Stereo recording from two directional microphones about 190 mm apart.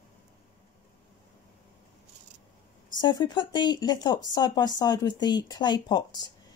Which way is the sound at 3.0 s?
20° left (ahead or behind).